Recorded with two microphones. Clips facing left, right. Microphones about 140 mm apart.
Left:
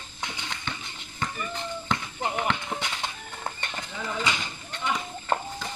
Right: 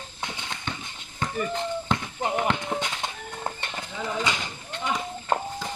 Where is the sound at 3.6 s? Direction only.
15° right (ahead or behind).